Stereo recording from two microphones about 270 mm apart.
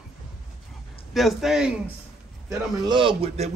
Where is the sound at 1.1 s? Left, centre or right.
Centre.